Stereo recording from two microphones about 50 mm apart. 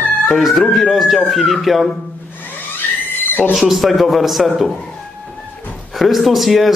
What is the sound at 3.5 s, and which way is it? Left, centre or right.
A man's voice, centre.